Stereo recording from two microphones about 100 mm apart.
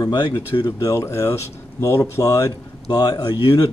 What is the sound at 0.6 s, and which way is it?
Speech, 30° left (ahead or behind).